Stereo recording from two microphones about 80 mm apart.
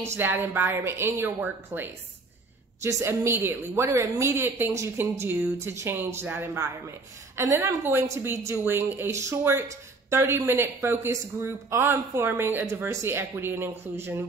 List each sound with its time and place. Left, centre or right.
0.0 s a woman's voice: right
12.3 s a woman's voice: right